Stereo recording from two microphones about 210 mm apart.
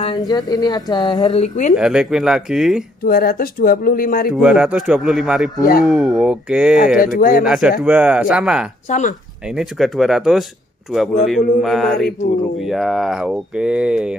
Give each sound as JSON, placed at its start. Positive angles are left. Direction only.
{"t": 0.3, "sound": "a woman's voice", "side_deg": 20}
{"t": 1.8, "sound": "speech", "side_deg": -5}
{"t": 3.1, "sound": "speech", "side_deg": 45}
{"t": 4.3, "sound": "speech", "side_deg": -5}
{"t": 5.6, "sound": "speech", "side_deg": 45}
{"t": 5.9, "sound": "speech", "side_deg": 0}
{"t": 7.2, "sound": "speech", "side_deg": 40}
{"t": 7.4, "sound": "speech", "side_deg": 0}
{"t": 8.8, "sound": "speech", "side_deg": 35}
{"t": 9.6, "sound": "speech", "side_deg": 0}